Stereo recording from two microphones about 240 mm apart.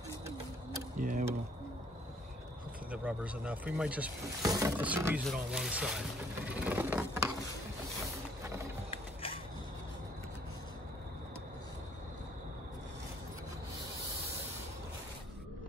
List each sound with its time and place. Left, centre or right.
0.9 s mechanisms: right
2.9 s speech: centre
6.6 s mechanisms: centre
8.9 s a sound: left